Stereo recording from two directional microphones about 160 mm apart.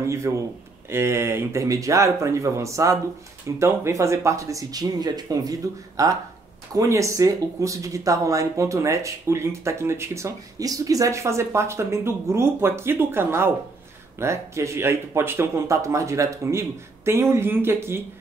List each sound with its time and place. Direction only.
0.0 s speech: 20° right (ahead or behind)